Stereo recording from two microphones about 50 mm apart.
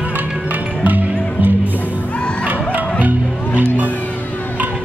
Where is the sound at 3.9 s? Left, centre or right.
Left.